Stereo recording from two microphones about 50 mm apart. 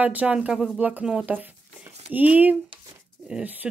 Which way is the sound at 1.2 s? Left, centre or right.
Right.